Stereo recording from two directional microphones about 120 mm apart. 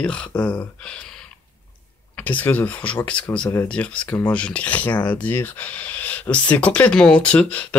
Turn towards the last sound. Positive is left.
turn(degrees=10)  # may be behind; listen again after turning